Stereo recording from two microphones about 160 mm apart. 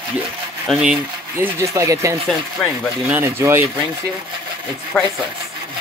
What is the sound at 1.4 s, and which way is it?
Speech, 20° right (ahead or behind).